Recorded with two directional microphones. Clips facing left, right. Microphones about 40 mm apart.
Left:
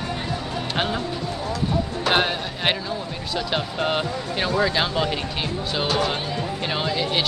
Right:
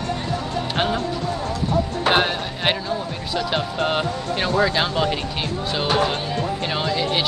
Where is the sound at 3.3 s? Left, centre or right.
Centre.